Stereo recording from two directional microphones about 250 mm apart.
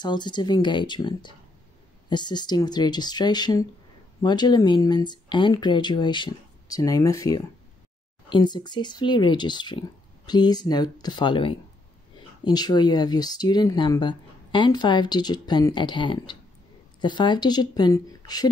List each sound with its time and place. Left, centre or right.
0.0 s speech: centre